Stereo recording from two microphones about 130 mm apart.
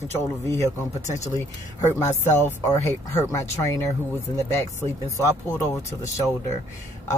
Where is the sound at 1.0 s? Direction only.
65° left (ahead or behind).